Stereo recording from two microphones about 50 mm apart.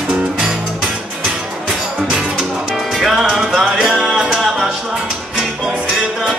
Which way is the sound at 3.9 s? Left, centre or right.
Centre.